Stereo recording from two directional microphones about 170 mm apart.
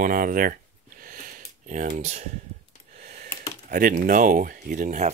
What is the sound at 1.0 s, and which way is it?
Sniff, 55° right (ahead or behind).